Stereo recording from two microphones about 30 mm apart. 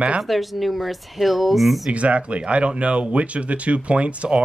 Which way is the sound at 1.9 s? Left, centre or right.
Right.